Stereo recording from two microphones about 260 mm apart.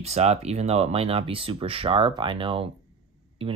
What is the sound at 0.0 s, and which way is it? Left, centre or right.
Speech, right.